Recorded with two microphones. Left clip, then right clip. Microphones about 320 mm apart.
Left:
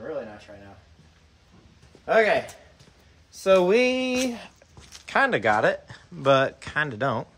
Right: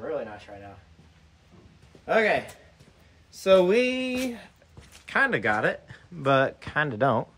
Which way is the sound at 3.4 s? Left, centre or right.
Centre.